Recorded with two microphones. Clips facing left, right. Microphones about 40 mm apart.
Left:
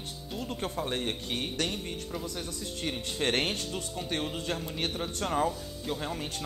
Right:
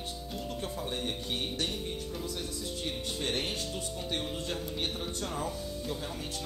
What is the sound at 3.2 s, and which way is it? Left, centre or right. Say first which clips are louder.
Speech: left 6 dB; left.